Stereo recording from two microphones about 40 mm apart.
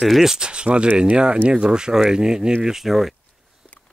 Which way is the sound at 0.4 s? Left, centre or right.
Right.